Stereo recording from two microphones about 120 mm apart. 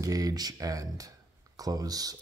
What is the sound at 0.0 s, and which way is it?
Speech, 30° right (ahead or behind).